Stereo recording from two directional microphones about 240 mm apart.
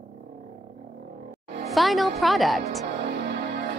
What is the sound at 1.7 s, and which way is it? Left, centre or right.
Speech, centre.